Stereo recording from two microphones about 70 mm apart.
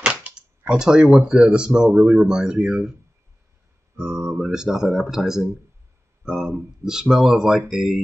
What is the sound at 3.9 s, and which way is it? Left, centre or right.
Speech, centre.